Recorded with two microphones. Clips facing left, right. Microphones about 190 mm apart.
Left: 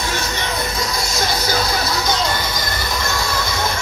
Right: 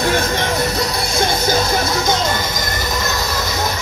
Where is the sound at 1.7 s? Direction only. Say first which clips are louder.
Right 3 dB; 45° right (ahead or behind).